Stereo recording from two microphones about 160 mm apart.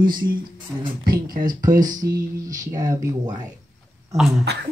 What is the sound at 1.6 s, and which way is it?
Speech, 25° right (ahead or behind).